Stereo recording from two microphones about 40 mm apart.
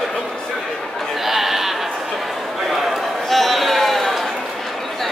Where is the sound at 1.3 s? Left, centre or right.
Centre.